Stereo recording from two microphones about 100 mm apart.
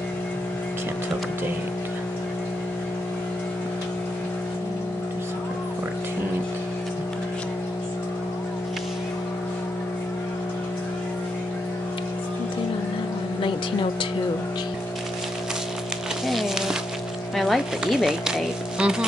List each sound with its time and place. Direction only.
16.3 s music: centre (ahead or behind)
17.4 s speech: centre (ahead or behind)